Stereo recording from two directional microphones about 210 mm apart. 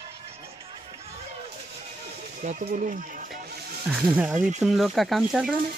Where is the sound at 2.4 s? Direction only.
35° right (ahead or behind).